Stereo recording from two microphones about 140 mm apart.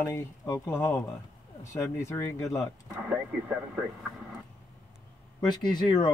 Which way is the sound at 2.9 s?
10° right (ahead or behind).